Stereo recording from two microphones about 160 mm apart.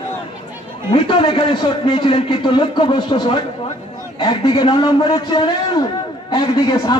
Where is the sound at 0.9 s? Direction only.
30° left (ahead or behind).